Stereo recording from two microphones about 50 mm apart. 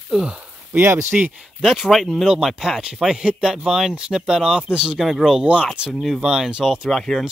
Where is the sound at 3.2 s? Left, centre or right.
Centre.